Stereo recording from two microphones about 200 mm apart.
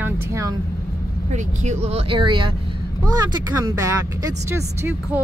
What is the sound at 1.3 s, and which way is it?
Speech, 35° right (ahead or behind).